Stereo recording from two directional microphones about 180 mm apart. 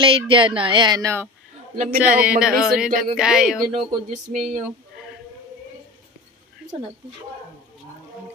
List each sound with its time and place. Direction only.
0.0 s speech: 30° right (ahead or behind)
2.0 s a sound: 5° right (ahead or behind)
3.7 s speech: 40° right (ahead or behind)